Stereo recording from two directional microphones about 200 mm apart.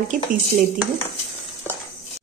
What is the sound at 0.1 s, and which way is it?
Speech, 40° right (ahead or behind).